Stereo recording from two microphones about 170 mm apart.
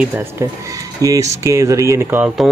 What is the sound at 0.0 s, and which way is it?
Speech, 10° right (ahead or behind).